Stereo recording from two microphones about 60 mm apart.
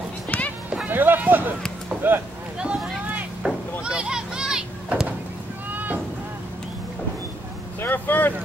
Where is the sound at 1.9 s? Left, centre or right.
Right.